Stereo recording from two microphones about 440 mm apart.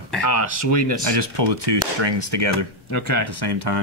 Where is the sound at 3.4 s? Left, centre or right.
Right.